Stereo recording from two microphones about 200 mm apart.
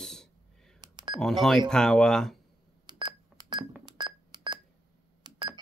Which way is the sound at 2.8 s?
20° right (ahead or behind).